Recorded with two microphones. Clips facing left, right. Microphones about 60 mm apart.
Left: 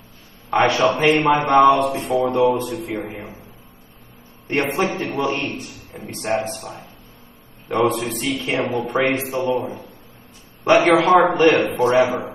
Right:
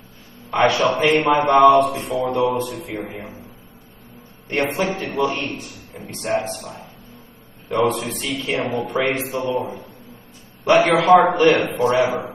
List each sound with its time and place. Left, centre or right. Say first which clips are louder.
0.5 s a man's voice: left 1 dB; left
4.5 s a man's voice: left 1 dB; left
10.8 s a man's voice: right 1 dB; left